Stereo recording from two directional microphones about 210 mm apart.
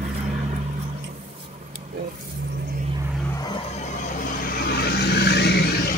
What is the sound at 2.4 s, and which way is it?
Vehicle, 45° right (ahead or behind).